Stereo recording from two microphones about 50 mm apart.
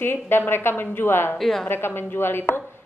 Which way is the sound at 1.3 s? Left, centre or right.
Centre.